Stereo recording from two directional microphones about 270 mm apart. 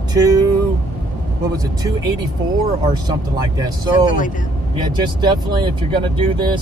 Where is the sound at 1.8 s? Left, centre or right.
Centre.